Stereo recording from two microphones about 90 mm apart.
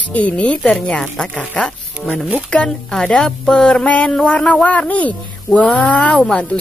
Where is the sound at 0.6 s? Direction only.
Centre (ahead or behind).